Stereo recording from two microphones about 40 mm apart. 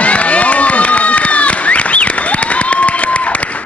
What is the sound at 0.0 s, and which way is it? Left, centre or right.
Crowd, left.